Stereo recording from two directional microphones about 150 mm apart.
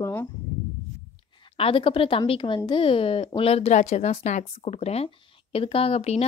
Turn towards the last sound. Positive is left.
turn(degrees=45)  # may be behind; listen again after turning